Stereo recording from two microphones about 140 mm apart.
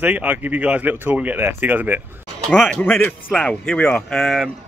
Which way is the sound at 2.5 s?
5° left (ahead or behind).